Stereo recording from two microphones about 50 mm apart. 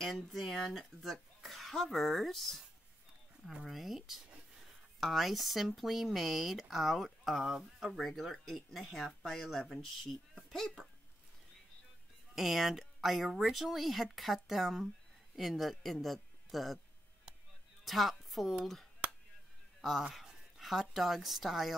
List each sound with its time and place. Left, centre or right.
0.0 s speech: centre
3.6 s speech: centre
9.2 s speech: centre
12.4 s speech: centre
17.8 s a woman's voice: centre
19.0 s a sound: right
20.2 s a sound: centre
20.9 s speech: centre